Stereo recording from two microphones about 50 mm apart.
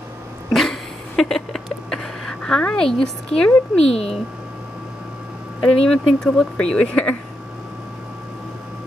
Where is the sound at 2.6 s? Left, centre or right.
Centre.